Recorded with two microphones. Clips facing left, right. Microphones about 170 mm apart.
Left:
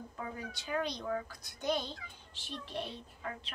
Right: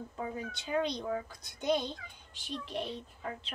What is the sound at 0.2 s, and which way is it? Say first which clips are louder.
A woman's voice: right 4 dB; 25° right (ahead or behind).